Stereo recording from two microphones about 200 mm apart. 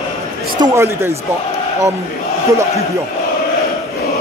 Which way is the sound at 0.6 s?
15° right (ahead or behind).